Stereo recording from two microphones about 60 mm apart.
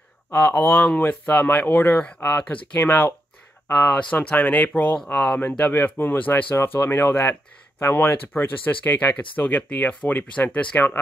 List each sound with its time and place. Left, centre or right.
0.3 s speech: left
0.9 s speech: left
2.4 s speech: left
4.1 s speech: left